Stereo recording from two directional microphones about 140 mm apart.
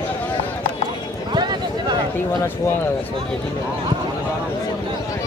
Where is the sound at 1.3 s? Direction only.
30° right (ahead or behind).